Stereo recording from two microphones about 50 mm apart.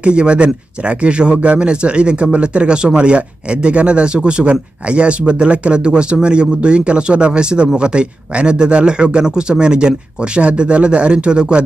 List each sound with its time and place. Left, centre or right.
0.0 s speech: right